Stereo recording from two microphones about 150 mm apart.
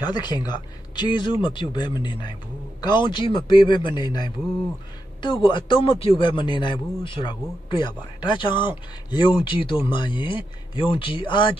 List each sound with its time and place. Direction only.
0.0 s a man's voice: 30° left (ahead or behind)